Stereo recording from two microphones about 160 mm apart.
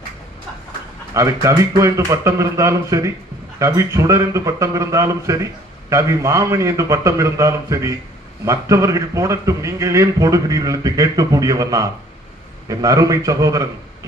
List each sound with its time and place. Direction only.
1.1 s speech: 20° right (ahead or behind)